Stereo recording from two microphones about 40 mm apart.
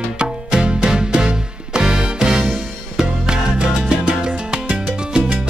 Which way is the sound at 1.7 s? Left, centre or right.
Centre.